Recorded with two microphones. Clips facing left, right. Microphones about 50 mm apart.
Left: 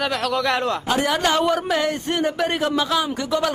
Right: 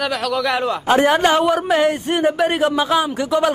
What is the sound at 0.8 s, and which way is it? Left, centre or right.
Speech, right.